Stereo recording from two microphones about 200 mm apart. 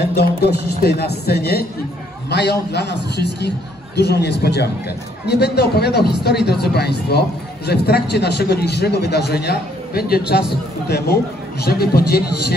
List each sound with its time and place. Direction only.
0.0 s a man's voice: 50° left (ahead or behind)